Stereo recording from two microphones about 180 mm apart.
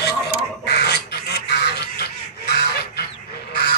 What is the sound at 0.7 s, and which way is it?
Bird, 65° left (ahead or behind).